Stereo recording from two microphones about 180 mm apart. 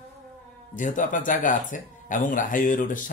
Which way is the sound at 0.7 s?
45° left (ahead or behind).